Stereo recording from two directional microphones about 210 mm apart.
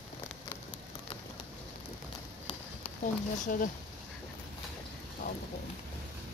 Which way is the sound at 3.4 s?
40° left (ahead or behind).